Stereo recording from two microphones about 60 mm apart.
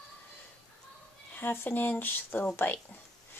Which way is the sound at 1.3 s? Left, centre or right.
Left.